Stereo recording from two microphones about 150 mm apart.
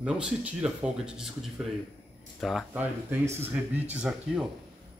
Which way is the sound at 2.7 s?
15° right (ahead or behind).